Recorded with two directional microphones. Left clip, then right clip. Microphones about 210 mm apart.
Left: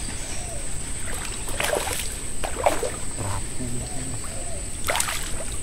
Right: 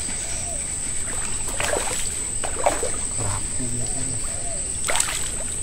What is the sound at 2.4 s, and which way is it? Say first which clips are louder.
Rowboat: even; 20° left (ahead or behind).